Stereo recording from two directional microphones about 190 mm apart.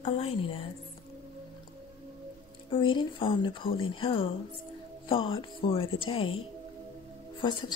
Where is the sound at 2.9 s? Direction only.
25° left (ahead or behind).